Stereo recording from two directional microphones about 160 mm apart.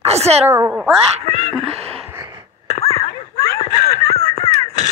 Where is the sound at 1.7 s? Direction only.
40° right (ahead or behind).